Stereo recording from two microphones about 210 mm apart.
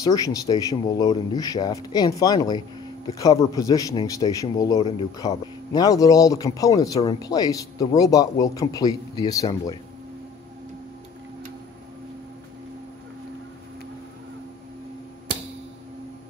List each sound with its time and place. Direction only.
0.0 s a man's voice: 15° left (ahead or behind)